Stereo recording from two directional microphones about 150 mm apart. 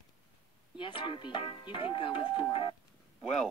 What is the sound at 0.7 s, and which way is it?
Speech, 35° left (ahead or behind).